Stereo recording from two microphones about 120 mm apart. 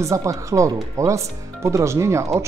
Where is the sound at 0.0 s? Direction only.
25° right (ahead or behind).